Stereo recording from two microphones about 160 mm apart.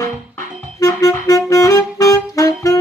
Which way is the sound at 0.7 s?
20° left (ahead or behind).